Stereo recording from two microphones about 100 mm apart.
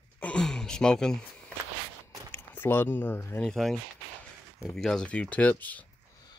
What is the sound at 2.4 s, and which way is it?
Speech, 20° left (ahead or behind).